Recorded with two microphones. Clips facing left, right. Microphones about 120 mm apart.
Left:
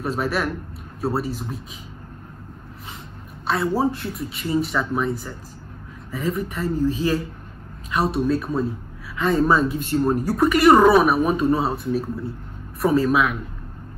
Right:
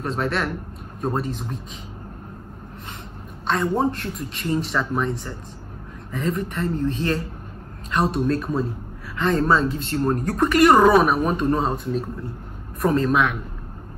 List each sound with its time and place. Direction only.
0.0 s speech: 10° left (ahead or behind)
3.4 s speech: 5° left (ahead or behind)